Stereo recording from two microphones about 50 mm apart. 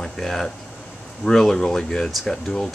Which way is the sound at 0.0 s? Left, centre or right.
Centre.